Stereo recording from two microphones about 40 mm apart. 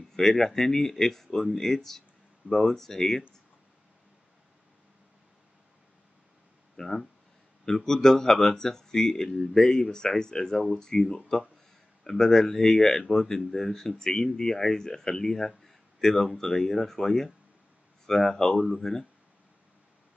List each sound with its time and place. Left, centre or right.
0.1 s speech: centre
6.8 s speech: centre